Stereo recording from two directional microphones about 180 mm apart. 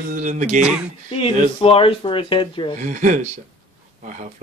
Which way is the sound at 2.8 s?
45° right (ahead or behind).